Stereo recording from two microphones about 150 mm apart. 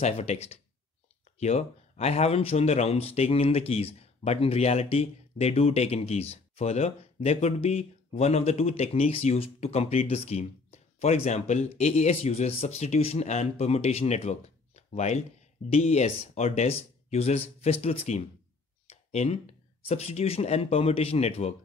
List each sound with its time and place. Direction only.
0.0 s speech: 45° left (ahead or behind)
18.9 s a sound: 45° left (ahead or behind)
19.9 s speech: 45° left (ahead or behind)